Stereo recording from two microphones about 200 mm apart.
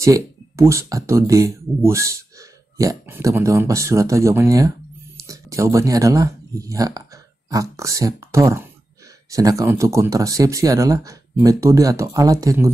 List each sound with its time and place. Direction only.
0.0 s speech: 15° right (ahead or behind)